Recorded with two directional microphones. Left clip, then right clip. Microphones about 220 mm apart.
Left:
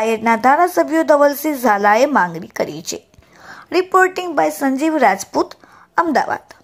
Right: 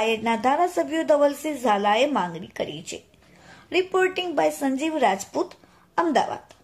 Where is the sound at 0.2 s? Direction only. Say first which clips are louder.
Left 9 dB; 20° left (ahead or behind).